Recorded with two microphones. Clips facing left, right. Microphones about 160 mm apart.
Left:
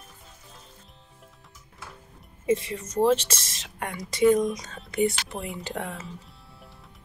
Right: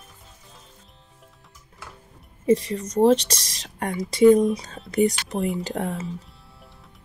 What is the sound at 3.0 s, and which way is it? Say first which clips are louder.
Speech: right 4 dB; 35° right (ahead or behind).